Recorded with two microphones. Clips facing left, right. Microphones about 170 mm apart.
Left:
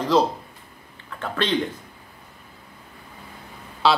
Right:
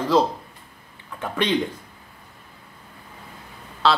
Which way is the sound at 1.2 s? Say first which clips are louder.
Right 1 dB; 15° right (ahead or behind).